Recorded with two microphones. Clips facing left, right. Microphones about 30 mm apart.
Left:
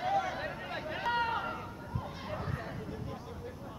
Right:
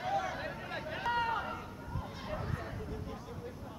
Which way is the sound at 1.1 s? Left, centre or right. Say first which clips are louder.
Left 1 dB; left.